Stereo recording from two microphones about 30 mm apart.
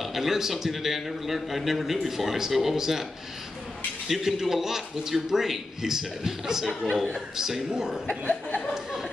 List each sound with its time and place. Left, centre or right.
0.0 s a man's voice: centre
4.1 s a man's voice: centre